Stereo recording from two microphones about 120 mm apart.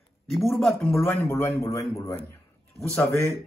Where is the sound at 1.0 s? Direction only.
20° left (ahead or behind).